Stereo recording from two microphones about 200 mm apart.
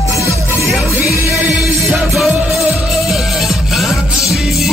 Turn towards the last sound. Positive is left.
turn(degrees=0)  # may be behind; listen again after turning